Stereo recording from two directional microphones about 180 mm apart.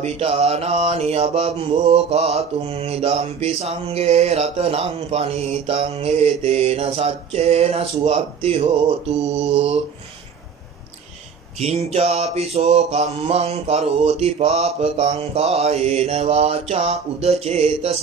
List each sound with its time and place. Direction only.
0.0 s mantra: 35° right (ahead or behind)
11.6 s mantra: 35° right (ahead or behind)